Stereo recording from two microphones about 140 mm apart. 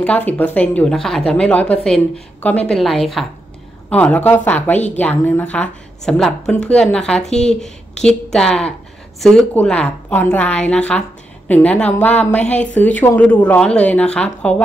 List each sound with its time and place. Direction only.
0.0 s a woman's voice: 10° left (ahead or behind)